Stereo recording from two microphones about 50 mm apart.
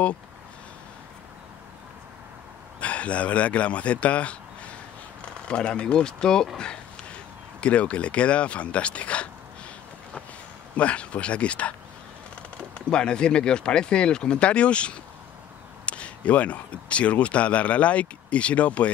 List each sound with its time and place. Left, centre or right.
2.8 s a man's voice: left
7.6 s speech: left
10.8 s speech: left
12.7 s speech: centre